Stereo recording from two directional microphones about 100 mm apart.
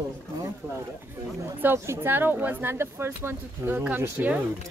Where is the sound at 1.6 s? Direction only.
25° right (ahead or behind).